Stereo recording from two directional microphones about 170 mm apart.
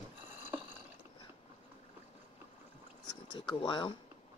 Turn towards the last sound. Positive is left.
turn(degrees=25)  # may be behind; listen again after turning